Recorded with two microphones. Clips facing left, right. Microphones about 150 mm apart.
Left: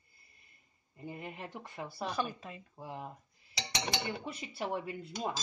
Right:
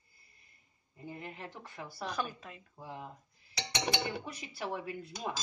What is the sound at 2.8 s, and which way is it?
Speech, 20° left (ahead or behind).